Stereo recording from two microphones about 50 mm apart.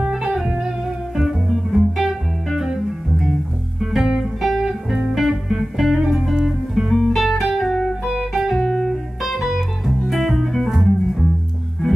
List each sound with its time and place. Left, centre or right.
0.0 s music: centre
4.4 s music: centre
7.0 s music: centre